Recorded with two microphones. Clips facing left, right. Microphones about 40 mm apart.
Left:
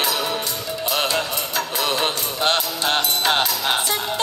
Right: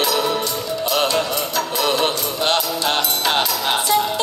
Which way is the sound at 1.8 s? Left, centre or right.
Centre.